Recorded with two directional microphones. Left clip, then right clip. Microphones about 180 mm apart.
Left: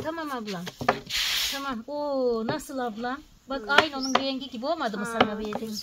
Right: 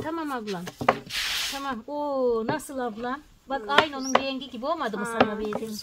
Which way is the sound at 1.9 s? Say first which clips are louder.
Right 1 dB; 50° right (ahead or behind).